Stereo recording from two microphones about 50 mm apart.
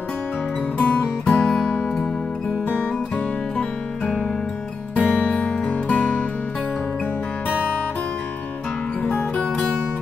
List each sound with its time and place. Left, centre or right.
0.7 s music: left
3.5 s music: left
9.0 s music: left